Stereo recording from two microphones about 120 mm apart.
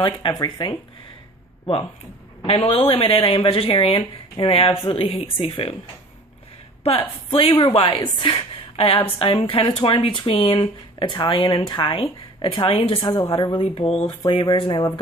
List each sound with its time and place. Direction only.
0.4 s speech: 40° left (ahead or behind)
2.4 s a woman's voice: 50° left (ahead or behind)
6.8 s a woman's voice: 55° left (ahead or behind)
13.1 s speech: 30° left (ahead or behind)